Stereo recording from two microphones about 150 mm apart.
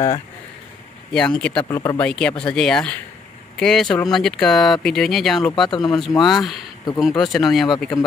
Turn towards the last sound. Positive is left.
turn(degrees=0)  # may be behind; listen again after turning